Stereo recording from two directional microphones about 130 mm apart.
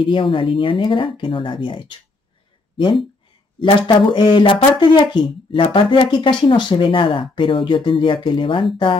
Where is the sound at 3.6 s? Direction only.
40° left (ahead or behind).